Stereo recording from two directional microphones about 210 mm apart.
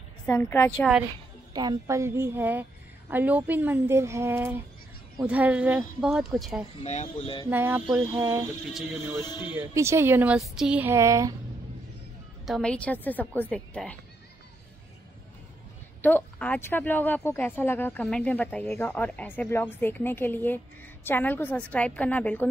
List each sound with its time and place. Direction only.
0.3 s speech: 10° left (ahead or behind)
1.5 s speech: 20° right (ahead or behind); by 6.6 s centre (ahead or behind)
6.8 s speech: 30° left (ahead or behind)
7.4 s speech: 10° right (ahead or behind)
8.6 s speech: centre (ahead or behind)
9.1 s speech: 10° right (ahead or behind)
12.4 s speech: centre (ahead or behind)
16.0 s speech: 10° left (ahead or behind)